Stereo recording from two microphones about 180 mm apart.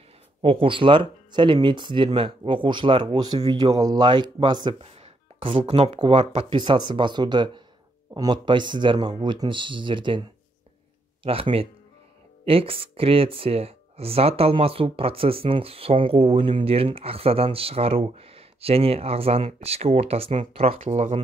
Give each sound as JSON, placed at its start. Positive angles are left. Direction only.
{"t": 0.4, "sound": "speech", "side_deg": -30}
{"t": 11.2, "sound": "speech", "side_deg": -30}